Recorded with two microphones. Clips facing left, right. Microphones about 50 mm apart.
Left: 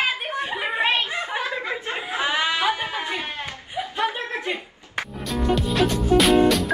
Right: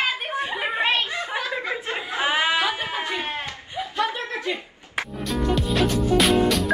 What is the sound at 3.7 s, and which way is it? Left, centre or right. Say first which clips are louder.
Chuckle: even; left.